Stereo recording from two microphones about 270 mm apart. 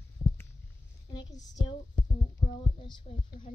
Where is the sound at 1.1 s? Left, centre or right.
Centre.